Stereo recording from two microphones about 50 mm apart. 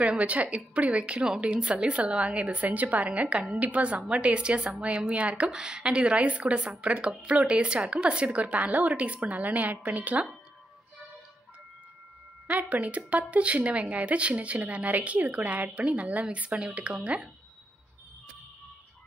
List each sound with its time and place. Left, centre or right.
0.0 s a woman's voice: right
5.5 s a woman's voice: centre; by 10.2 s right
12.4 s a woman's voice: right